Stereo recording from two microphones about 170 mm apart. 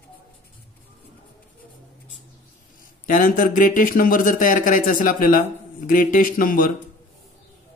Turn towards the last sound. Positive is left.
turn(degrees=55)  # may be behind; listen again after turning